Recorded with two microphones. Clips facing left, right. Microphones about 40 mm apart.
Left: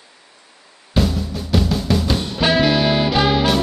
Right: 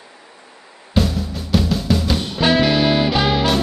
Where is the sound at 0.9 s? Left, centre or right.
Centre.